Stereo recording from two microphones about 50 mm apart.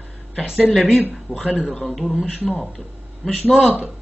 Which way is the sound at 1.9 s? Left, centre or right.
Centre.